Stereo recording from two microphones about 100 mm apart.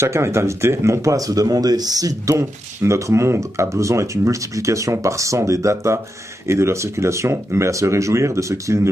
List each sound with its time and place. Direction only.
0.0 s speech: 25° right (ahead or behind)